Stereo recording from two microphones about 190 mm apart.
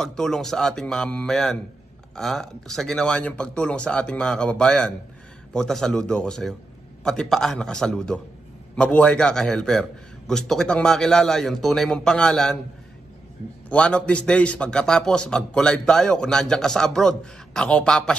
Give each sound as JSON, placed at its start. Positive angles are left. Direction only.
{"t": 0.0, "sound": "a man's voice", "side_deg": 5}
{"t": 13.7, "sound": "a man's voice", "side_deg": 5}